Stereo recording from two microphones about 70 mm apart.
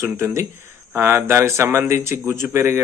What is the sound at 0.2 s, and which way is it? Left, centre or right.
Speech, right.